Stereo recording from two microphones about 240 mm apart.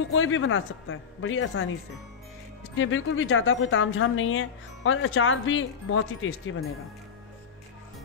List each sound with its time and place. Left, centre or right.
0.1 s a woman's voice: left
2.7 s a woman's voice: left